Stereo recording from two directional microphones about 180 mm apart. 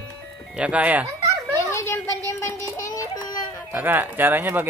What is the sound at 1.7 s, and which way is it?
Music, 15° left (ahead or behind).